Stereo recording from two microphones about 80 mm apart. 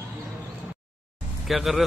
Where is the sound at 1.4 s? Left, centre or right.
Centre.